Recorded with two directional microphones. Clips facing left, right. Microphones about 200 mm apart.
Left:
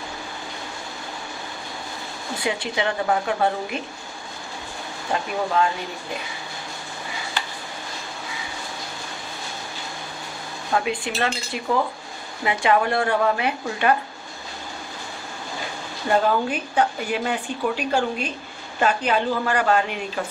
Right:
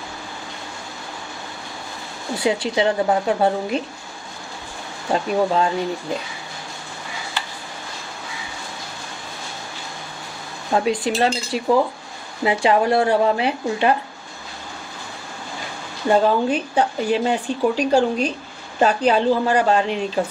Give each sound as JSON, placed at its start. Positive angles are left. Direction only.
{"t": 2.4, "sound": "speech", "side_deg": -30}
{"t": 5.1, "sound": "speech", "side_deg": -30}
{"t": 10.7, "sound": "speech", "side_deg": -30}
{"t": 16.1, "sound": "speech", "side_deg": -30}